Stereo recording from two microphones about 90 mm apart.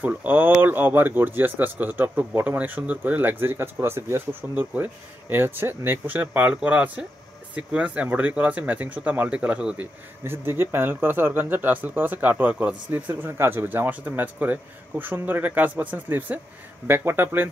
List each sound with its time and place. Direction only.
0.0 s speech: 15° right (ahead or behind)
10.2 s speech: 25° right (ahead or behind)